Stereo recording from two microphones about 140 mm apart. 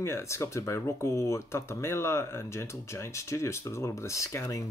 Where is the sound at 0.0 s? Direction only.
20° left (ahead or behind).